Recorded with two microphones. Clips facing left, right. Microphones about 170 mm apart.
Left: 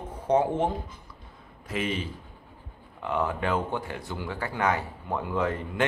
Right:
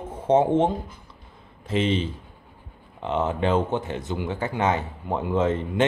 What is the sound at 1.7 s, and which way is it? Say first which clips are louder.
Speech: right 7 dB; 25° right (ahead or behind).